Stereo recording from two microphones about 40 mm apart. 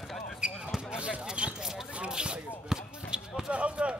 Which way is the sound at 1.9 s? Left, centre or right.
Right.